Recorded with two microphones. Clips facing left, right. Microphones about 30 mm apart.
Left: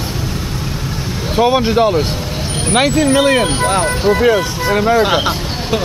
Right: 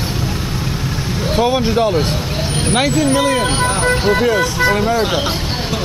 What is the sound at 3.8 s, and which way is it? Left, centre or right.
Speech, centre.